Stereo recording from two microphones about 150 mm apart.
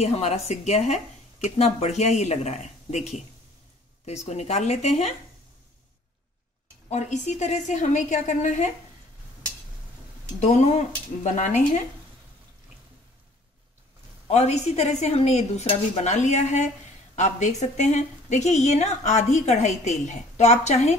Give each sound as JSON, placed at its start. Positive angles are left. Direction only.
{"t": 0.0, "sound": "a woman's voice", "side_deg": 45}
{"t": 6.9, "sound": "a woman's voice", "side_deg": 50}
{"t": 10.4, "sound": "a woman's voice", "side_deg": 50}
{"t": 14.2, "sound": "a woman's voice", "side_deg": 45}